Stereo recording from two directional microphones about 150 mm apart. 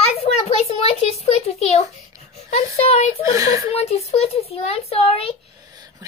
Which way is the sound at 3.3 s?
20° right (ahead or behind).